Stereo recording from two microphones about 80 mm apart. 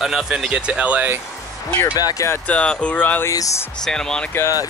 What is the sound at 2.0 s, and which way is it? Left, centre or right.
Speech, left.